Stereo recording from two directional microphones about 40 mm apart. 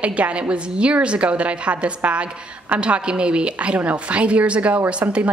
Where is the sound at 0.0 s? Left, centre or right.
Right.